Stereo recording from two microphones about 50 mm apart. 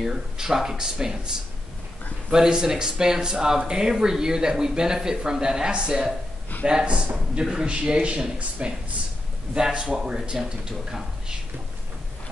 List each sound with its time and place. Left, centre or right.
0.0 s speech: centre
2.3 s speech: centre